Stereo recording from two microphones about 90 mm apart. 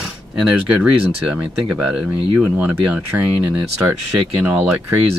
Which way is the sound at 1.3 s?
15° right (ahead or behind).